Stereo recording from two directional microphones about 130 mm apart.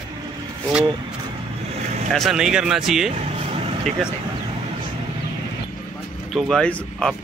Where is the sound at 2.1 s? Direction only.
Centre (ahead or behind).